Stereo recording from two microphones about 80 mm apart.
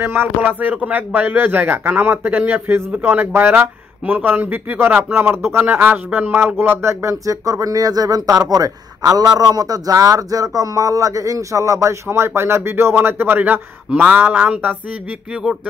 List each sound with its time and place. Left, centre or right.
0.0 s speech: right